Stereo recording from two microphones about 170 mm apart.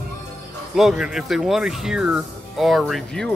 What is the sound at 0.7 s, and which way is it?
Speech, 5° right (ahead or behind).